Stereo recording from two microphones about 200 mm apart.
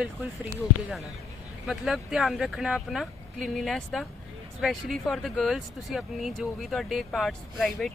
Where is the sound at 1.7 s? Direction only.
5° right (ahead or behind).